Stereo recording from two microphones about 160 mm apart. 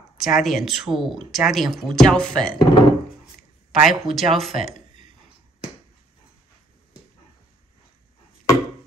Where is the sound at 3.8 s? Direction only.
Centre (ahead or behind).